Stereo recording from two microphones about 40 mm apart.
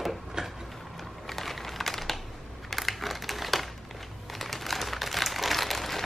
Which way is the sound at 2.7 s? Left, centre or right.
Centre.